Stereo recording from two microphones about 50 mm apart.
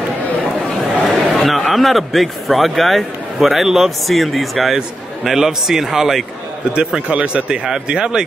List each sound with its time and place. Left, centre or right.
1.0 s a man's voice: centre
6.9 s a man's voice: centre